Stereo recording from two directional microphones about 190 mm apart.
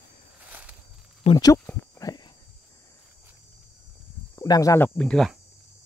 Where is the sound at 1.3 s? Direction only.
30° left (ahead or behind).